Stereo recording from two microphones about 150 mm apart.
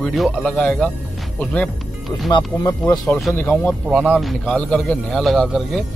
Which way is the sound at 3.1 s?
Centre (ahead or behind).